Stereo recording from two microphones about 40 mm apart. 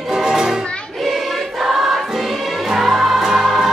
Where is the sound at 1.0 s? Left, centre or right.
Centre.